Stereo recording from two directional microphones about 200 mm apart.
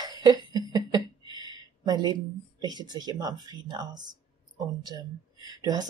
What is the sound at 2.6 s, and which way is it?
Speech, 20° right (ahead or behind).